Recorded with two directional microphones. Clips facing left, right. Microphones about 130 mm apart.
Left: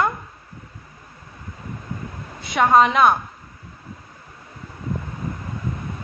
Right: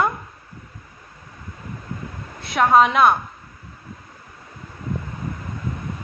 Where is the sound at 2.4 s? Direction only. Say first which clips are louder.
Even; centre (ahead or behind).